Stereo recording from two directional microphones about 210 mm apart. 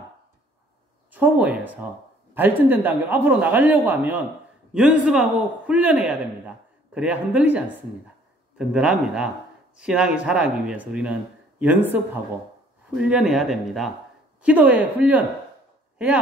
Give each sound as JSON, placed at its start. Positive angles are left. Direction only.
{"t": 1.1, "sound": "a man's voice", "side_deg": -10}